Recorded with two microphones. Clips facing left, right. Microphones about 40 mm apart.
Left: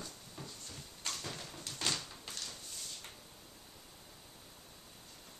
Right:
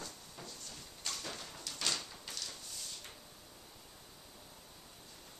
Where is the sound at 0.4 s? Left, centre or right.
Centre.